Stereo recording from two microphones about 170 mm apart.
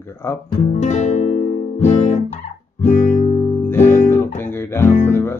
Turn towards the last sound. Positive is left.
turn(degrees=15)  # may be behind; listen again after turning